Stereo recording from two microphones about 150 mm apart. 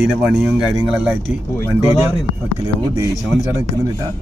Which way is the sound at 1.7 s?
15° right (ahead or behind).